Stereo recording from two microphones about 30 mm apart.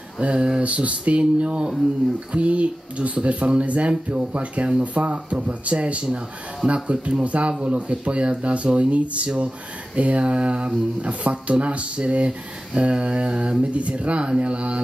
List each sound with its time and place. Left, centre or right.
0.2 s speech: right
13.6 s speech: right